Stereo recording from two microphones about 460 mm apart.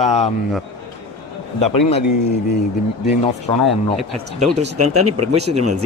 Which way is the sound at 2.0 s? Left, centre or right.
Left.